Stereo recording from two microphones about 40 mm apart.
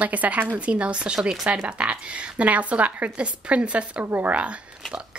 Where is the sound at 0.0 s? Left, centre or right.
Right.